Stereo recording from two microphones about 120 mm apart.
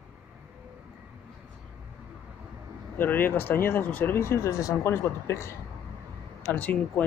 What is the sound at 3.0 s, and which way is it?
Speech, 15° left (ahead or behind).